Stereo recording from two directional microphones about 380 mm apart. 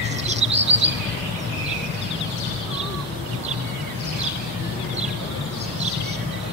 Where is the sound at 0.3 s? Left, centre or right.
Centre.